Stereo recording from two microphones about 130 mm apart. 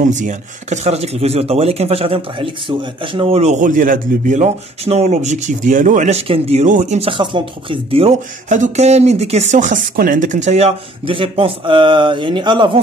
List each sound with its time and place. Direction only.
0.0 s speech: 70° right (ahead or behind)
7.1 s speech: 40° right (ahead or behind)
8.5 s speech: 75° right (ahead or behind); by 12.8 s 40° right (ahead or behind)